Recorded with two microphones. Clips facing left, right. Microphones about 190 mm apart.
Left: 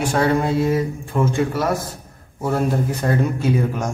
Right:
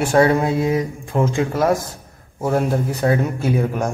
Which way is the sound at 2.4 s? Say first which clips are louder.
Right 1 dB; 10° right (ahead or behind).